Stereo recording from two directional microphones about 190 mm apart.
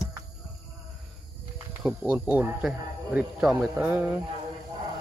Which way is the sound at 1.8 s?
5° right (ahead or behind).